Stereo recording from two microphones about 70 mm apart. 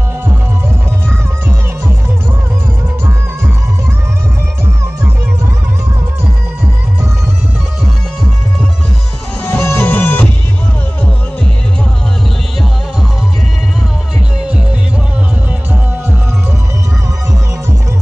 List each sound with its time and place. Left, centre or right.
9.4 s music: left